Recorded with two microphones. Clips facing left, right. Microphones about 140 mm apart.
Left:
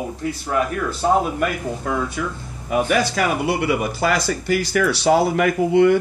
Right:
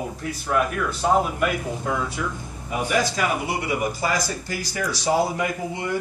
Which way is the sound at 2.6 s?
65° left (ahead or behind).